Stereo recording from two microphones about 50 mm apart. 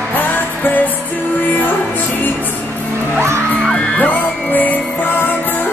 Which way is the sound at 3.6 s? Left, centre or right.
Centre.